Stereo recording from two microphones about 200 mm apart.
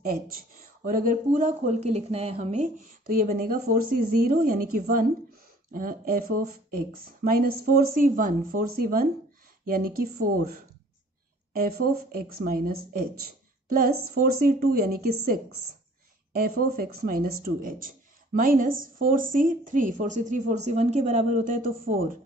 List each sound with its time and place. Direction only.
0.0 s a woman's voice: 45° right (ahead or behind)
5.7 s speech: 45° right (ahead or behind)
16.3 s speech: 45° right (ahead or behind)